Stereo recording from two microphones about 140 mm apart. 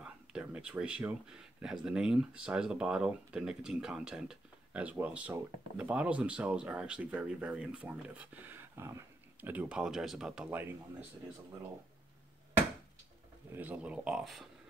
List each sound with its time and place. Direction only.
0.0 s speech: 5° right (ahead or behind)
13.5 s speech: 10° right (ahead or behind)